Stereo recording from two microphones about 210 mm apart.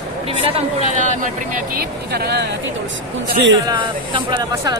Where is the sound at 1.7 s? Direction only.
50° right (ahead or behind).